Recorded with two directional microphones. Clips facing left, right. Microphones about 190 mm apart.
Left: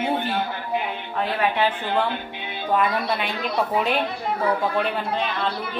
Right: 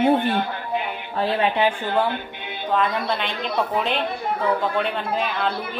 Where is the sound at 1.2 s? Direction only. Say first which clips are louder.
Right 2 dB; 25° right (ahead or behind).